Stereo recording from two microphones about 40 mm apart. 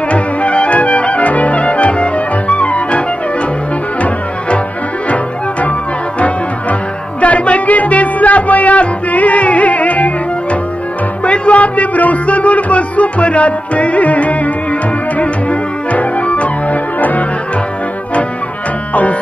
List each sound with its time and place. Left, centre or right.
0.1 s music: left
7.2 s music: left
11.2 s music: left
15.9 s organ: left